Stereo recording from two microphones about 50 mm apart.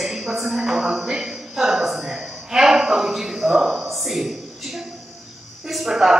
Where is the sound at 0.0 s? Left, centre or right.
Centre.